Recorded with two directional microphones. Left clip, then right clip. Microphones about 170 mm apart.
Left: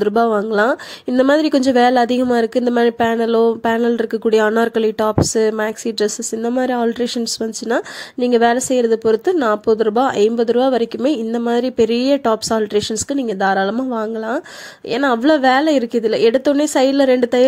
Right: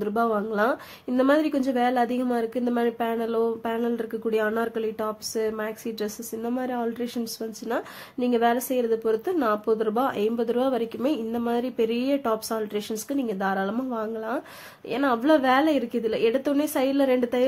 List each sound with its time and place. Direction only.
0.0 s a woman's voice: 45° left (ahead or behind)